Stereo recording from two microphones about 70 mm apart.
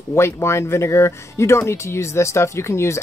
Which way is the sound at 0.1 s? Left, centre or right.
Left.